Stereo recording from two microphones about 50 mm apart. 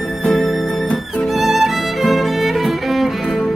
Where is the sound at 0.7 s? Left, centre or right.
Centre.